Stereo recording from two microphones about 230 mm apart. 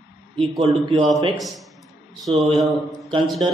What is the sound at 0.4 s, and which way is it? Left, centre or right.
Speech, right.